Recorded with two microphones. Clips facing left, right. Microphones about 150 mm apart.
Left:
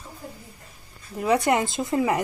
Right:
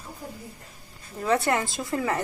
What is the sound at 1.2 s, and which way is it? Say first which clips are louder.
Speech: left 3 dB; 15° left (ahead or behind).